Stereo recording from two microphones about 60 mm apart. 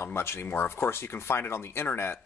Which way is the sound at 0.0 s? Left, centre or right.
Left.